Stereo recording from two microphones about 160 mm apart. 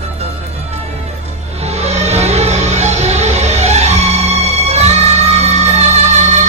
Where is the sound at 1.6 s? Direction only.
40° right (ahead or behind).